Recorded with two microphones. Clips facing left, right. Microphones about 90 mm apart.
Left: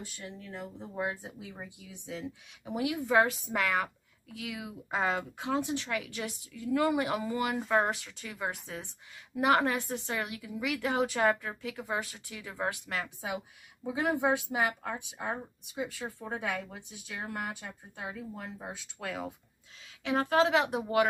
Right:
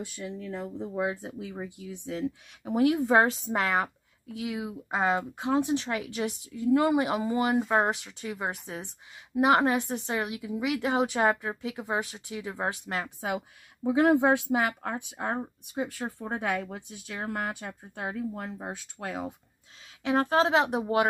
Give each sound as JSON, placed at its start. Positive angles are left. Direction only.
{"t": 0.9, "sound": "speech", "side_deg": -90}
{"t": 13.8, "sound": "speech", "side_deg": -65}
{"t": 15.8, "sound": "speech", "side_deg": -45}
{"t": 18.9, "sound": "speech", "side_deg": -25}